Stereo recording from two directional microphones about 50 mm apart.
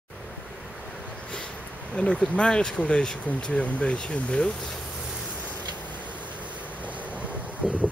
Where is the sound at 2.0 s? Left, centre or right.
Left.